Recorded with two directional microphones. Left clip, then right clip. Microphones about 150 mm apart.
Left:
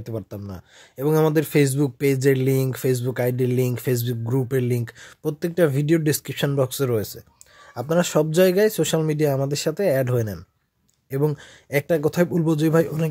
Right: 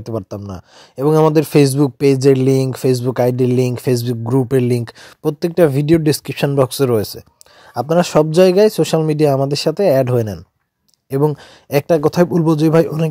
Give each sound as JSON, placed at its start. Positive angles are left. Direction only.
{"t": 0.0, "sound": "speech", "side_deg": -35}